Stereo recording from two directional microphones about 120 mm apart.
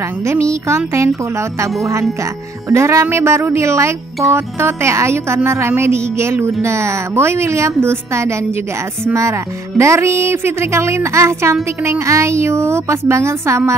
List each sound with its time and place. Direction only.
0.2 s speech: 20° right (ahead or behind)
2.7 s speech: 25° right (ahead or behind)